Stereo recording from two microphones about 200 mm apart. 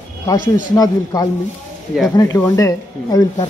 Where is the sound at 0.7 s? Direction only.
15° left (ahead or behind).